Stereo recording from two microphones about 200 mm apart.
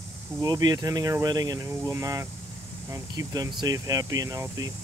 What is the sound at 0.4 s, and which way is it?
Speech, 20° right (ahead or behind).